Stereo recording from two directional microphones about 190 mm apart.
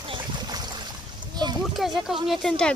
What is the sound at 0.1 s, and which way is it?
Boat, 20° right (ahead or behind).